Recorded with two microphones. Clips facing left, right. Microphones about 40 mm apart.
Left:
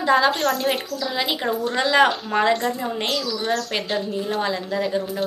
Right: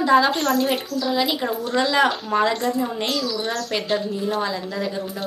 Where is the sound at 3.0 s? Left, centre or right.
Centre.